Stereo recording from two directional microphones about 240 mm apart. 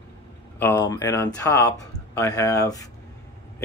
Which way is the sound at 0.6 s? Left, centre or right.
Centre.